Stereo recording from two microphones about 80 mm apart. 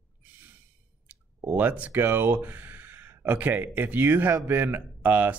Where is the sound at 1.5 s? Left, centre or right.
Centre.